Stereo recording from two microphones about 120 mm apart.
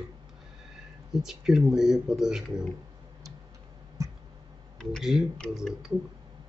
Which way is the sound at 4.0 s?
30° right (ahead or behind).